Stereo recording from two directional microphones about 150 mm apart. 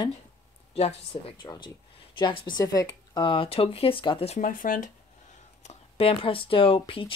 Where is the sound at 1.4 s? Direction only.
30° left (ahead or behind).